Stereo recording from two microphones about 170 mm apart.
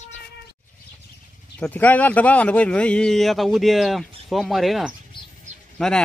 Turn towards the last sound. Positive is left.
turn(degrees=5)  # may be behind; listen again after turning